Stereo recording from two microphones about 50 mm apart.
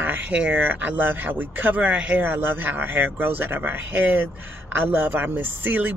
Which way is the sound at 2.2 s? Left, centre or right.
Right.